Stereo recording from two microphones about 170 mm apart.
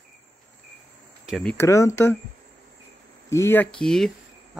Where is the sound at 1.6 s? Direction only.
15° left (ahead or behind).